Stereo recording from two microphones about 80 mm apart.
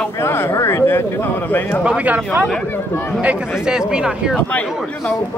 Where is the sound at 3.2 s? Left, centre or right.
Centre.